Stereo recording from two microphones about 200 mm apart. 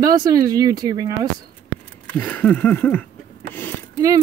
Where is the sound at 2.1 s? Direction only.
10° left (ahead or behind).